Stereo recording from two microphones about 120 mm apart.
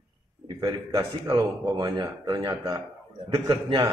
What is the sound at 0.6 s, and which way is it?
A man's voice, 30° right (ahead or behind).